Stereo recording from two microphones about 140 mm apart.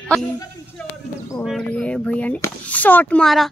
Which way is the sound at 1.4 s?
5° left (ahead or behind).